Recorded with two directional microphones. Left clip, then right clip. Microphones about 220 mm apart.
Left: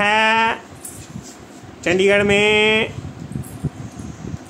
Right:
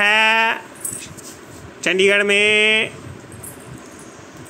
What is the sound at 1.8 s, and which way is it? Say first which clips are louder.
Speech: even; 5° right (ahead or behind).